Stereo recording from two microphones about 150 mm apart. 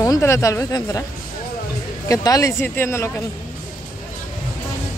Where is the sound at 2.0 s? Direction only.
25° left (ahead or behind).